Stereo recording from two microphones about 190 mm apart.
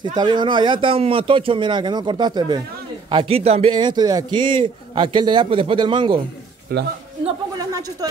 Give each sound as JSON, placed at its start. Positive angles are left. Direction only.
{"t": 0.2, "sound": "a man's voice", "side_deg": -25}
{"t": 6.7, "sound": "a man's voice", "side_deg": -55}
{"t": 7.5, "sound": "speech", "side_deg": -20}